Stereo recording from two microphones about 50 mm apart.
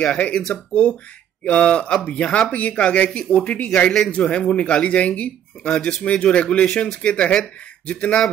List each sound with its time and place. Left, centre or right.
0.0 s speech: left
1.4 s speech: left